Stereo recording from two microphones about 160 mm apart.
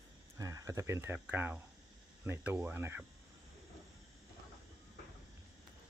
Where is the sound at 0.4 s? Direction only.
20° right (ahead or behind).